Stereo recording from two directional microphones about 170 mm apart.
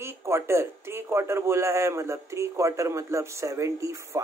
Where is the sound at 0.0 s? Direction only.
15° right (ahead or behind).